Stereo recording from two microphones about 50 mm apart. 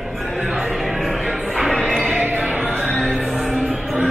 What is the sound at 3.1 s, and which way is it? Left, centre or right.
Music, centre.